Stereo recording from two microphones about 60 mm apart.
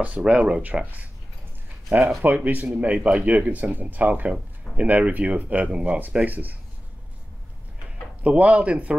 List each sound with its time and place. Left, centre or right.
0.2 s speech: centre
5.7 s speech: centre
6.1 s speech: right
8.2 s speech: right